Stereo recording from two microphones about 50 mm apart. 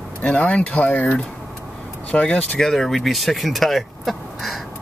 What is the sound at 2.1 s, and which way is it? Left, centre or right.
Speech, centre.